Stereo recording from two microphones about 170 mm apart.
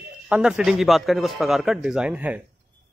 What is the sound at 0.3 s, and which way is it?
A man's voice, 5° right (ahead or behind).